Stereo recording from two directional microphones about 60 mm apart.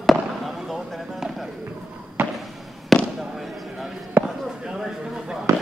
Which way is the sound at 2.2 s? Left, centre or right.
Right.